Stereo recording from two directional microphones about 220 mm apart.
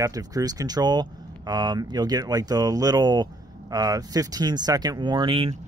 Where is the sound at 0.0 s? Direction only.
15° right (ahead or behind).